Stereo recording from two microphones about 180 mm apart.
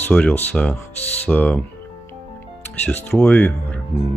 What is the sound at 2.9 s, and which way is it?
Speech, 5° left (ahead or behind).